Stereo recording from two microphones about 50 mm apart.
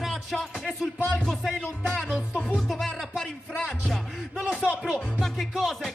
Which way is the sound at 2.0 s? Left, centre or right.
Centre.